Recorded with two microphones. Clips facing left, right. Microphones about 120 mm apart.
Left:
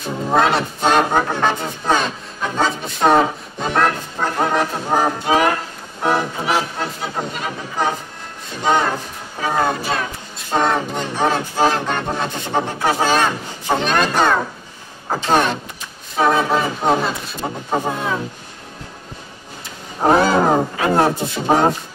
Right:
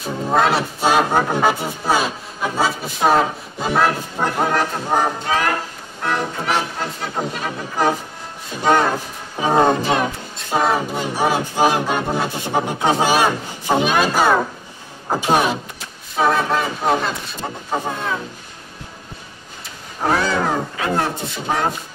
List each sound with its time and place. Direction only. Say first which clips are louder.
0.0 s music: left 1 dB; centre (ahead or behind)
4.4 s speech: left 2 dB; centre (ahead or behind)
5.2 s music: left 4 dB; 15° left (ahead or behind)
6.4 s music: left 1 dB; 5° left (ahead or behind)
8.6 s speech: right 1 dB; 5° right (ahead or behind)
9.4 s speech: right 4 dB; 25° right (ahead or behind)
10.5 s music: even; 5° right (ahead or behind)
16.2 s speech: left 1 dB; centre (ahead or behind)
20.0 s roaring cats: left 5 dB; 20° left (ahead or behind)
20.3 s speech: left 5 dB; 35° left (ahead or behind)